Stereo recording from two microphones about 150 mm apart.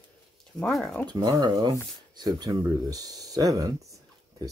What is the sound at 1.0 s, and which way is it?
Speech, 30° right (ahead or behind).